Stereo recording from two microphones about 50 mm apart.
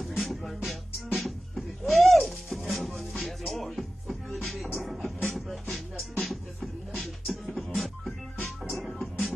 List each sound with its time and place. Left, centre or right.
0.0 s music: centre
4.5 s beatboxing: centre
6.1 s music: centre
7.7 s a sound: centre
8.6 s music: centre